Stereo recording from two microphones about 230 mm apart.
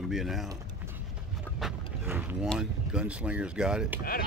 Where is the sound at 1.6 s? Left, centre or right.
Centre.